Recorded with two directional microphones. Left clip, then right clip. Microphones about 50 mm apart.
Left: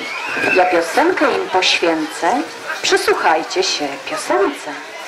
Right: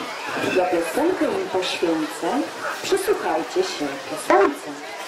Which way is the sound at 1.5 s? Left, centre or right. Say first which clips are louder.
Left 9 dB; left.